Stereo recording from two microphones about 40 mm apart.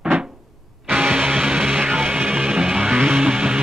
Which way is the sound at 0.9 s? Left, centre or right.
Right.